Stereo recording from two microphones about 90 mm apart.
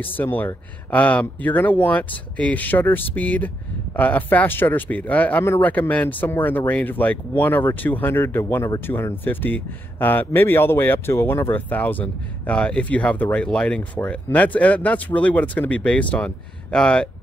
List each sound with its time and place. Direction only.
0.0 s speech: 20° left (ahead or behind)